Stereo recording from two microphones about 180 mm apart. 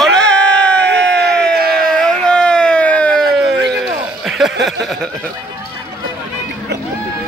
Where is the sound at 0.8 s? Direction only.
70° right (ahead or behind).